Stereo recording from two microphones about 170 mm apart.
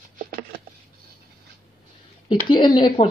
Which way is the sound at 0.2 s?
55° right (ahead or behind).